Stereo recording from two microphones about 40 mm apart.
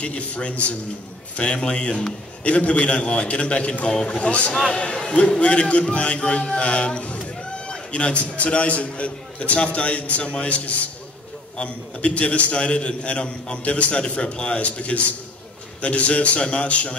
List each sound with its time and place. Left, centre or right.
0.0 s a man's voice: left